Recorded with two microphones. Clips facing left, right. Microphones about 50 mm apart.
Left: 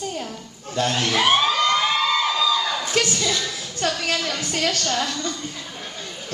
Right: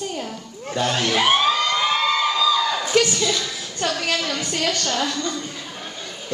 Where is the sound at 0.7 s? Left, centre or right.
Centre.